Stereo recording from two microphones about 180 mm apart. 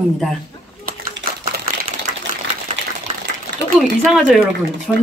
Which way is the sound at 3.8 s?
Centre (ahead or behind).